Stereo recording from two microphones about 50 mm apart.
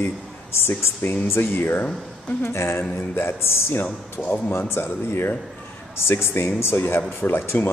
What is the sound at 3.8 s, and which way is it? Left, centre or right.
Speech, left.